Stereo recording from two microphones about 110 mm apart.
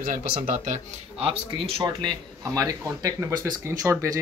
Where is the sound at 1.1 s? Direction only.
60° right (ahead or behind).